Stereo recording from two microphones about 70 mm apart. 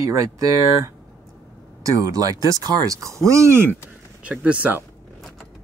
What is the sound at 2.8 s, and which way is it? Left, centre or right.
Speech, right.